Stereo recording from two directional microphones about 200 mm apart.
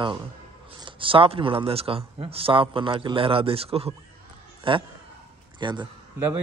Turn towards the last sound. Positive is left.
turn(degrees=-20)  # may be behind; listen again after turning